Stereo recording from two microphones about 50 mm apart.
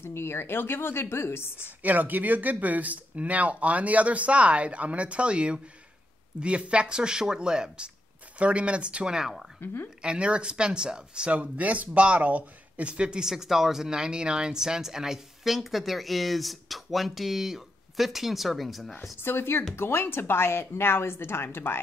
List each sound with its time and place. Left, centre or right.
0.0 s speech: left
1.8 s speech: right; by 11.3 s centre
11.3 s speech: right; by 18.9 s centre
19.1 s speech: left